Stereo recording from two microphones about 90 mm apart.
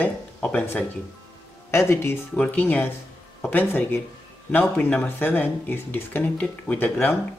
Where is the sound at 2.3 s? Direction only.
15° left (ahead or behind).